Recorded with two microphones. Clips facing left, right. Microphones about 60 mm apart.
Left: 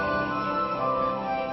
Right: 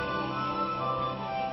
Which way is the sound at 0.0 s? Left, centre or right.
Left.